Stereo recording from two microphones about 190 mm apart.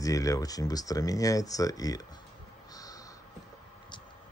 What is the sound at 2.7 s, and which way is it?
Crow, 20° left (ahead or behind).